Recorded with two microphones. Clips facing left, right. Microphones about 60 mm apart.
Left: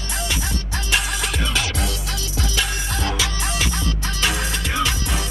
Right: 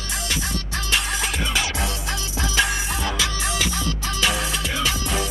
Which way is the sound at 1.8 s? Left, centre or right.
Right.